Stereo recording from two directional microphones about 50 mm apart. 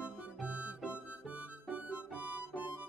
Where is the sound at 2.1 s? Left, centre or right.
Right.